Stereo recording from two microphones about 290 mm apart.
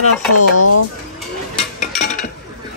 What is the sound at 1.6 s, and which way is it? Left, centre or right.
Mechanisms, left.